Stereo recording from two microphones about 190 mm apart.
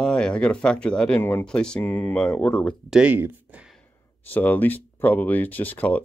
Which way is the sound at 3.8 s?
10° left (ahead or behind).